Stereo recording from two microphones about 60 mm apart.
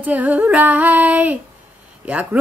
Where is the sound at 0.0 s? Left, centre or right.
Right.